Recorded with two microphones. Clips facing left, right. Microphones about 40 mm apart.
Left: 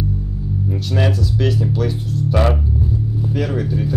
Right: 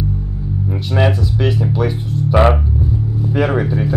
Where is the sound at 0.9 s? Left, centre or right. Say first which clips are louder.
Right 3 dB; right.